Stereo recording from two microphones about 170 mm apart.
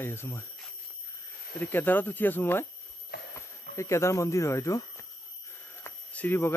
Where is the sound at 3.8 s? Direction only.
15° left (ahead or behind).